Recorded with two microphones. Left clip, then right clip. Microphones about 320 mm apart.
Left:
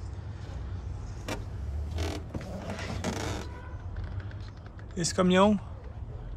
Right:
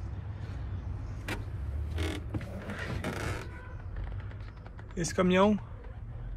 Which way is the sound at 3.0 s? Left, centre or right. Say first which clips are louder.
Left 4 dB; left.